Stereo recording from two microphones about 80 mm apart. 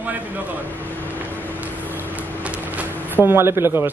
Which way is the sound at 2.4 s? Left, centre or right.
Right.